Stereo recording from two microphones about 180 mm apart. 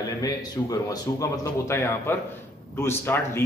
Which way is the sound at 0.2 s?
20° left (ahead or behind).